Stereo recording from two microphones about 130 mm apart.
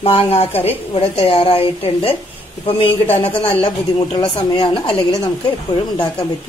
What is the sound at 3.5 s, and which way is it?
Speech, 40° left (ahead or behind).